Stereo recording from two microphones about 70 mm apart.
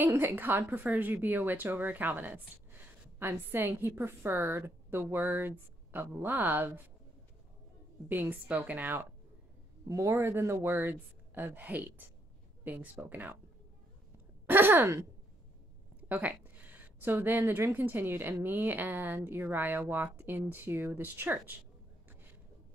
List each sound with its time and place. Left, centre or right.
0.0 s a woman's voice: right
8.1 s a woman's voice: right
9.8 s a man's voice: right
14.4 s speech: right
16.0 s a sound: right
17.5 s a woman's voice: right